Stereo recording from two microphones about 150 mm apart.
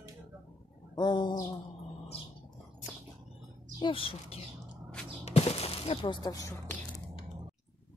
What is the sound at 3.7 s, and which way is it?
Speech, 35° left (ahead or behind).